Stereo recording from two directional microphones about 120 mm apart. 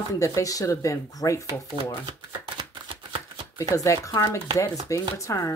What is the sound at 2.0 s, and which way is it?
Chopping, 45° right (ahead or behind).